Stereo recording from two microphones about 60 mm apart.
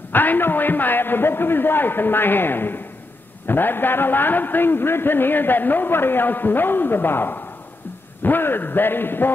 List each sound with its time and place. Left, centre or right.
0.1 s a man's voice: left